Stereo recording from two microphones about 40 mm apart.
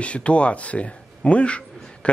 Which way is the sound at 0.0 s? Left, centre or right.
Left.